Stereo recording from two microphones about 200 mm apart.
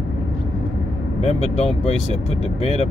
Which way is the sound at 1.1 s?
30° left (ahead or behind).